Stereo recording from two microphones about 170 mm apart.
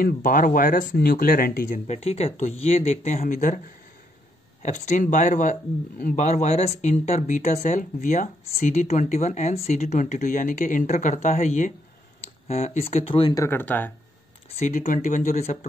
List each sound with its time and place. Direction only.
0.0 s speech: 55° left (ahead or behind)
1.9 s speech: 40° left (ahead or behind)
4.6 s a man's voice: 45° left (ahead or behind)
13.3 s speech: 15° left (ahead or behind)
14.5 s a man's voice: 40° left (ahead or behind)